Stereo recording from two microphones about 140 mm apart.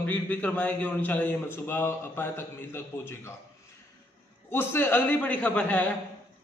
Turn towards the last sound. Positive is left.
turn(degrees=10)  # may be behind; listen again after turning